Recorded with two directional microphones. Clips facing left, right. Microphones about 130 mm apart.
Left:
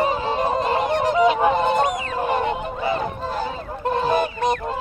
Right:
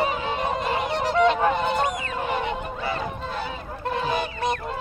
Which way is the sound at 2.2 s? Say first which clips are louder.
Left 5 dB; 45° left (ahead or behind).